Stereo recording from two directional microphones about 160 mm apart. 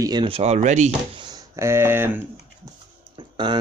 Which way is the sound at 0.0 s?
25° right (ahead or behind).